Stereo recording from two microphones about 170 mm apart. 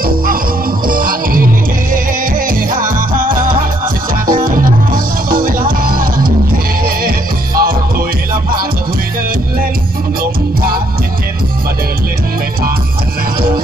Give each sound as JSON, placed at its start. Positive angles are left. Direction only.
{"t": 0.8, "sound": "music", "side_deg": -55}